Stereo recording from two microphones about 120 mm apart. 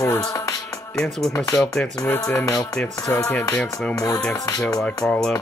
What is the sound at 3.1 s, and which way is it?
Music, 20° left (ahead or behind).